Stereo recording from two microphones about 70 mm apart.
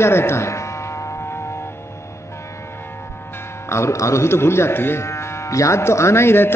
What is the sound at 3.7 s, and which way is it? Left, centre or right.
Speech, left.